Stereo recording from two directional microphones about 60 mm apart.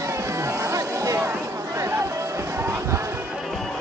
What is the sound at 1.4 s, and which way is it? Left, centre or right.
Music, right.